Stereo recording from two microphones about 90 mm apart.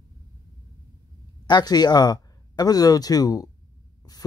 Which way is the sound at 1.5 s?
50° left (ahead or behind).